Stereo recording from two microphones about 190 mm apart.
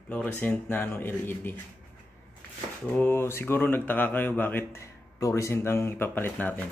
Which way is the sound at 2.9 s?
10° left (ahead or behind).